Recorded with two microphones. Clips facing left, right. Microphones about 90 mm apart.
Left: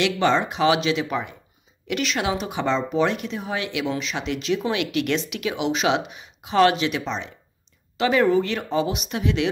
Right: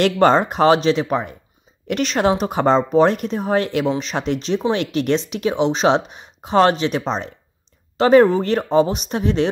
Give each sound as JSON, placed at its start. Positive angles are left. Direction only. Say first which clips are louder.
{"t": 0.0, "sound": "speech", "louder": "right 6 dB", "side_deg": -45}